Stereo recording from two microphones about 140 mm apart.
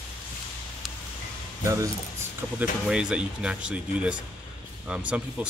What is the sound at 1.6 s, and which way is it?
Speech, 20° right (ahead or behind).